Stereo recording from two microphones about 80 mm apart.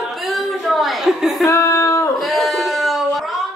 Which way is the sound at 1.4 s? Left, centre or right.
Left.